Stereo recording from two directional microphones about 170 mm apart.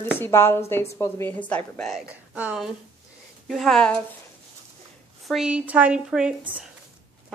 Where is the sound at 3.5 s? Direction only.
Centre (ahead or behind).